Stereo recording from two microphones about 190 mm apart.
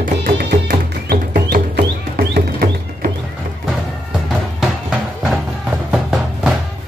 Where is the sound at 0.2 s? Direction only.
55° right (ahead or behind).